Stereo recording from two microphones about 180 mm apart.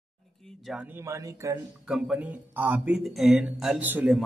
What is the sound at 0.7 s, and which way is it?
Speech, 10° right (ahead or behind).